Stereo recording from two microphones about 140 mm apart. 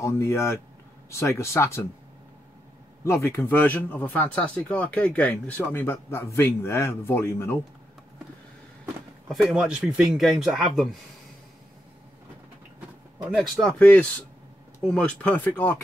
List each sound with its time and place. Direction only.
0.0 s speech: 20° left (ahead or behind)
3.0 s speech: 20° left (ahead or behind)
9.3 s speech: centre (ahead or behind)
13.3 s speech: centre (ahead or behind)